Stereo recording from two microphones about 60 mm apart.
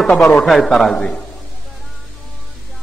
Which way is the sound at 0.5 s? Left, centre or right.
Centre.